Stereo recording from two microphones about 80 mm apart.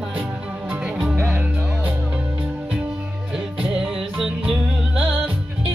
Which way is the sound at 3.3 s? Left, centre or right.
Centre.